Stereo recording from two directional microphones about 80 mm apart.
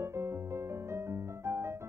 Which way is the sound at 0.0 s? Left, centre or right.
Right.